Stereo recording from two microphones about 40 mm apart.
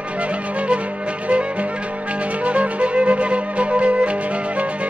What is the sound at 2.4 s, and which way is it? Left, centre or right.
Music, right.